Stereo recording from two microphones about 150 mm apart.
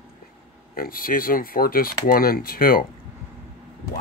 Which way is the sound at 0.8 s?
75° left (ahead or behind).